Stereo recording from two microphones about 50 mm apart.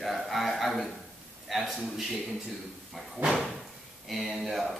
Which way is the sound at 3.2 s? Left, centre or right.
Right.